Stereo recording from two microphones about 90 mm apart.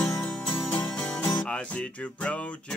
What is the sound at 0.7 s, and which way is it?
Music, 15° left (ahead or behind).